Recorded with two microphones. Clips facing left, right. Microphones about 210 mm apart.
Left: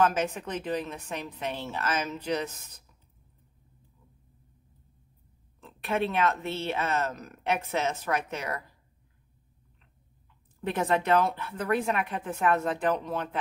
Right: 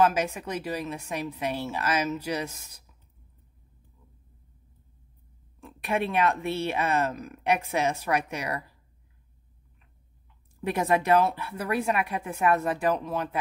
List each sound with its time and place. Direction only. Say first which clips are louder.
0.0 s speech: right 2 dB; 10° right (ahead or behind)
5.6 s speech: even; 15° right (ahead or behind)
10.6 s speech: right 2 dB; 10° right (ahead or behind)